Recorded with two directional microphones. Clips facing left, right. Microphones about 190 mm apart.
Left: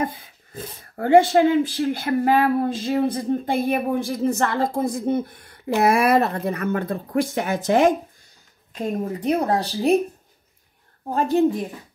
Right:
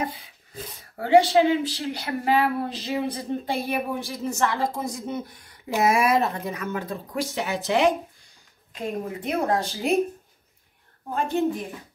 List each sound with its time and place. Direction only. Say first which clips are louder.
0.0 s speech: left 4 dB; 50° left (ahead or behind)
9.2 s speech: left 3 dB; 35° left (ahead or behind)
11.1 s speech: left 5 dB; 35° left (ahead or behind)